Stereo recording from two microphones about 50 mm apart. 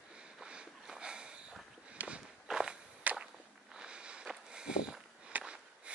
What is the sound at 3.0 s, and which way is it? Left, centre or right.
Whip, right.